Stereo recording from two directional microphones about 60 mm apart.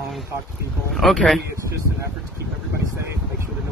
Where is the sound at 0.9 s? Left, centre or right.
Centre.